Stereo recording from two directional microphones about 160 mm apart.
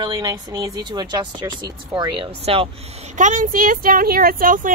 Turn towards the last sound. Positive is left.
turn(degrees=-60)  # may be behind; listen again after turning